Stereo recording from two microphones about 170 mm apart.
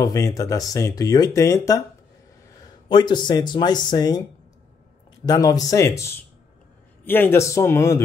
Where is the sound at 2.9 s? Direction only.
25° left (ahead or behind).